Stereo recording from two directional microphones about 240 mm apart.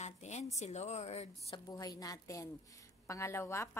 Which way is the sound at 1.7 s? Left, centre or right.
Centre.